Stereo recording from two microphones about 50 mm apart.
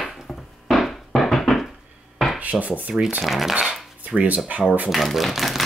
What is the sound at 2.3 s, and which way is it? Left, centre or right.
Rub, right.